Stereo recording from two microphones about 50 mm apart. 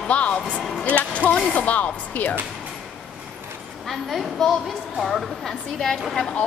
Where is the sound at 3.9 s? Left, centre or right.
Centre.